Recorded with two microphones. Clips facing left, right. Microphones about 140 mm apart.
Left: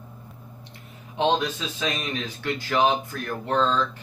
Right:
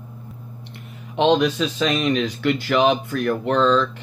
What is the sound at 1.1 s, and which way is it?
Speech, 80° right.